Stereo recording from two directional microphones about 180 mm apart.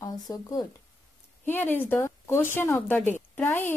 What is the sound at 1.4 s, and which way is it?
Speech, 10° left (ahead or behind).